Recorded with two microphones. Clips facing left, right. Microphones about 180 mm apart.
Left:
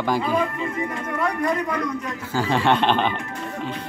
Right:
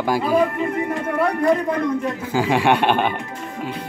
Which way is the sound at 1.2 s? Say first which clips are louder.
Right 5 dB; 30° right (ahead or behind).